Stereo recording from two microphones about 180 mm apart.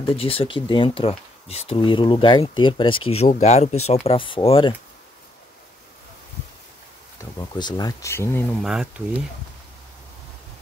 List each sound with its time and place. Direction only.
0.1 s speech: 30° left (ahead or behind)
7.2 s speech: 20° left (ahead or behind)
8.6 s speech: 5° right (ahead or behind)